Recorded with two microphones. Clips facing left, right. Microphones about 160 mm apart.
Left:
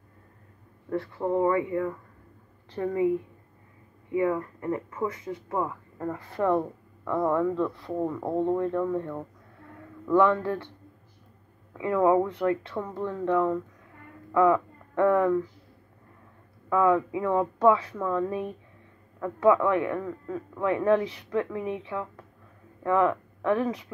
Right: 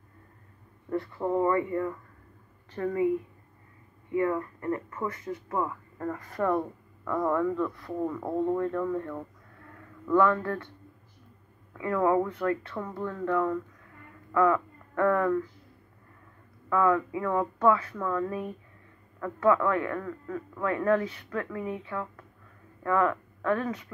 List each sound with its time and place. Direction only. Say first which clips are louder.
1.2 s a man's voice: left 1 dB; 15° left (ahead or behind)
4.1 s a man's voice: left 1 dB; 10° left (ahead or behind)
11.7 s a man's voice: left 3 dB; 15° left (ahead or behind)
16.6 s a man's voice: left 2 dB; 15° left (ahead or behind)